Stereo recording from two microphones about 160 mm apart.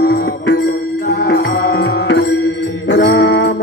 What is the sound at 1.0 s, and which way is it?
Music, 75° left (ahead or behind).